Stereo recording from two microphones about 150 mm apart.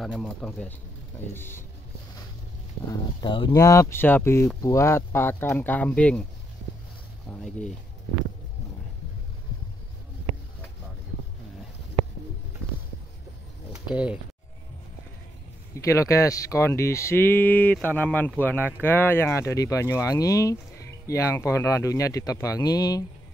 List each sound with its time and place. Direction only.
0.0 s speech: 5° left (ahead or behind)
2.9 s speech: 30° left (ahead or behind)
3.5 s speech: 20° left (ahead or behind)
13.8 s speech: 5° right (ahead or behind)
15.7 s speech: 20° left (ahead or behind)